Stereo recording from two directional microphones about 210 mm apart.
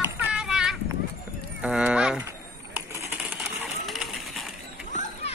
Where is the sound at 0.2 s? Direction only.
5° right (ahead or behind).